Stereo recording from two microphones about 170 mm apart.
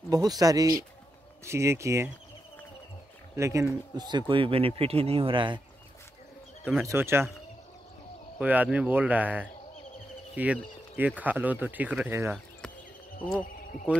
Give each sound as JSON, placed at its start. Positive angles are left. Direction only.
{"t": 0.1, "sound": "speech", "side_deg": -20}
{"t": 3.3, "sound": "speech", "side_deg": -15}
{"t": 6.6, "sound": "speech", "side_deg": -10}
{"t": 8.4, "sound": "speech", "side_deg": -10}